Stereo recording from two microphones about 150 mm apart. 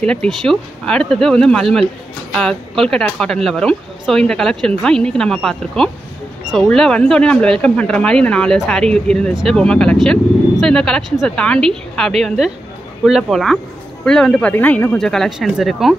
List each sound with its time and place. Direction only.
0.0 s speech: 5° left (ahead or behind)